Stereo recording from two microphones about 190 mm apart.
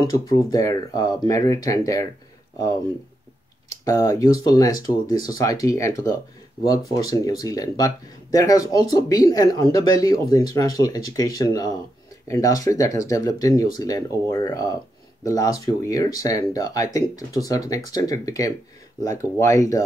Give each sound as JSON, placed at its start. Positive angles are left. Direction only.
{"t": 0.0, "sound": "speech", "side_deg": 20}
{"t": 3.8, "sound": "speech", "side_deg": 15}